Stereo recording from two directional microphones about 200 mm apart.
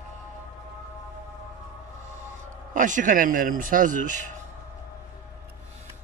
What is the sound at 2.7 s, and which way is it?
Speech, 40° right (ahead or behind).